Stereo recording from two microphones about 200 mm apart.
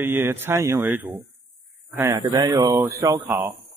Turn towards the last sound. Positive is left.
turn(degrees=-20)  # may be behind; listen again after turning